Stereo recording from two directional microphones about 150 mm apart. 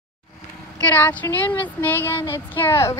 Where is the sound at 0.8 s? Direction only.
10° left (ahead or behind).